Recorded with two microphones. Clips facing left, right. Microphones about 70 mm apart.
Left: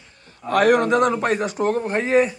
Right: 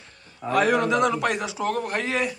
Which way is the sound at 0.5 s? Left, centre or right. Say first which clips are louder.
Left 4 dB; left.